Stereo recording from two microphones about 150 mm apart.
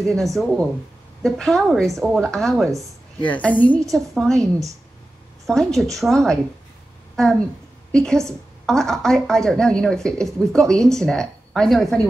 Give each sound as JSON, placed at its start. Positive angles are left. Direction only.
{"t": 0.0, "sound": "a woman's voice", "side_deg": 5}
{"t": 4.4, "sound": "speech", "side_deg": -20}
{"t": 5.5, "sound": "a woman's voice", "side_deg": 5}